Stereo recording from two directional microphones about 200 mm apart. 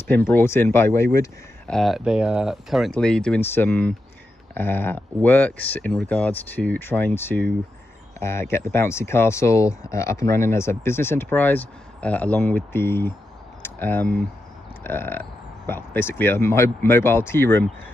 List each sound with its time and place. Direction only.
0.1 s speech: 10° left (ahead or behind)
1.7 s speech: centre (ahead or behind)